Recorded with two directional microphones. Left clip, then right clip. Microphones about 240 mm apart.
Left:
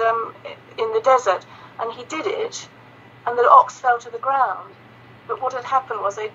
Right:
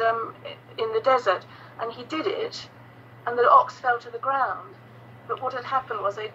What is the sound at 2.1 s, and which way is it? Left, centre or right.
Speech, left.